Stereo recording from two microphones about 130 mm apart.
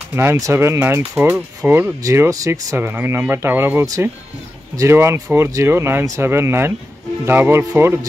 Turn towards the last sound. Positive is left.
turn(degrees=-20)  # may be behind; listen again after turning